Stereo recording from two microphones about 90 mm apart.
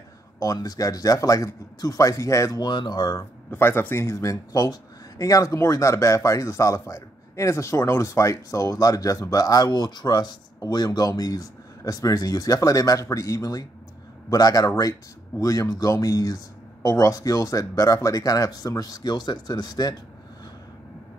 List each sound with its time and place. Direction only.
0.4 s speech: 40° left (ahead or behind)
2.6 s speech: 55° left (ahead or behind)
3.4 s speech: 25° left (ahead or behind); by 20.0 s 50° left (ahead or behind)